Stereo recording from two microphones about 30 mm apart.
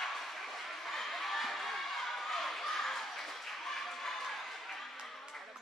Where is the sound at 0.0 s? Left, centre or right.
Centre.